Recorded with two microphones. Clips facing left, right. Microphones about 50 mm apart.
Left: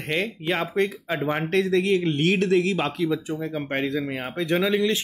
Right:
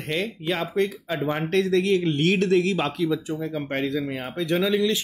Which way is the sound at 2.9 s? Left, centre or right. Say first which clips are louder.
Even; centre.